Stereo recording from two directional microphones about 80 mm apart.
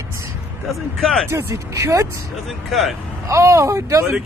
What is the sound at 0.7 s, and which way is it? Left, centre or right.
Speech, centre.